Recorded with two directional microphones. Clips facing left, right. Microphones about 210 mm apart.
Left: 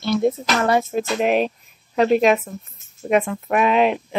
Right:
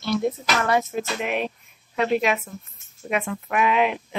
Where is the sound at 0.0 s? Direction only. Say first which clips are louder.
Left 4 dB; 25° left (ahead or behind).